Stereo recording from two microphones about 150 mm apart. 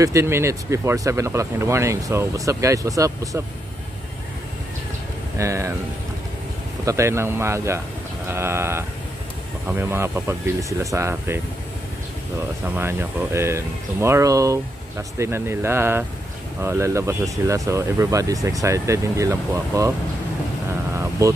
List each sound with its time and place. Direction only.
0.0 s speech: 20° right (ahead or behind)
5.4 s speech: 20° right (ahead or behind)
6.8 s speech: 20° right (ahead or behind)
20.9 s vehicle: 20° right (ahead or behind)